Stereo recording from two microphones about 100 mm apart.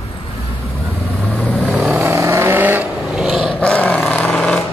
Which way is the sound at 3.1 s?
Centre (ahead or behind).